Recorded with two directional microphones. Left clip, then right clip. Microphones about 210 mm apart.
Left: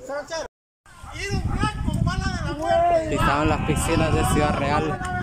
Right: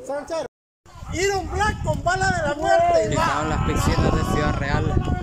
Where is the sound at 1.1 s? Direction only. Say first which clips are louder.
Right 8 dB; 35° right (ahead or behind).